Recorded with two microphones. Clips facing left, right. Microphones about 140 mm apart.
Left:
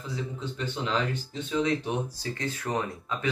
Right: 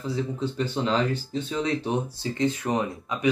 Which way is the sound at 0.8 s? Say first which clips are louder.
Right 3 dB; 35° right (ahead or behind).